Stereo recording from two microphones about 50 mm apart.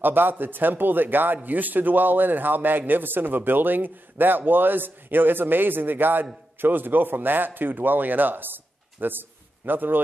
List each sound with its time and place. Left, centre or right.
0.0 s speech: right